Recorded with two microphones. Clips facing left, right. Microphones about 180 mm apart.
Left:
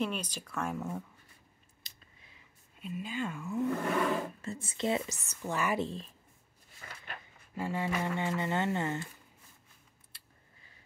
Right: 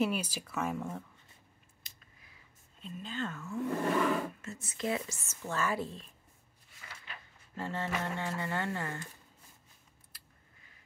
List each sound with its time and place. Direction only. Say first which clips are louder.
0.0 s speech: right 3 dB; 5° right (ahead or behind)
2.8 s speech: left 2 dB; 10° left (ahead or behind)
4.4 s speech: left 3 dB; 30° left (ahead or behind)
7.1 s a sound: left 5 dB; 55° left (ahead or behind)
7.5 s speech: left 2 dB; 10° left (ahead or behind)
10.1 s a sound: right 1 dB; 25° left (ahead or behind)